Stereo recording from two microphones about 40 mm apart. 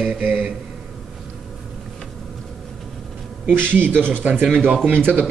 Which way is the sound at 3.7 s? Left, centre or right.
Right.